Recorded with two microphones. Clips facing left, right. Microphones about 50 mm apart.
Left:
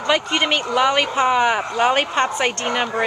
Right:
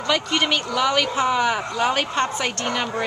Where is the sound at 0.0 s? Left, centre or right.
Left.